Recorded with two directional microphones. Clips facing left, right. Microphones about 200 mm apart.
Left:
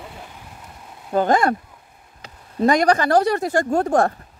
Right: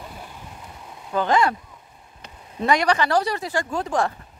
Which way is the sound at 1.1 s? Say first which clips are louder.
Left 3 dB; 45° left (ahead or behind).